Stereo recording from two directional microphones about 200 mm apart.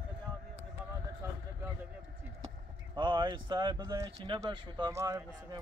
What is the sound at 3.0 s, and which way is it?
Speech, 20° right (ahead or behind).